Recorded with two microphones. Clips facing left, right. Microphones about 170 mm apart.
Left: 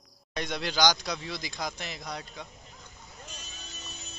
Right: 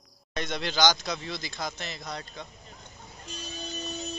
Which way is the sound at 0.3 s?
10° left (ahead or behind).